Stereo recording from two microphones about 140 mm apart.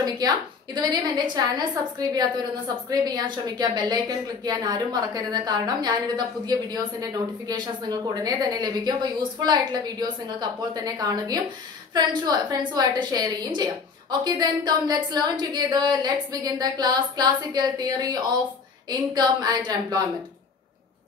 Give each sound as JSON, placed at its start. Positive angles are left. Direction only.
{"t": 0.0, "sound": "a woman's voice", "side_deg": -30}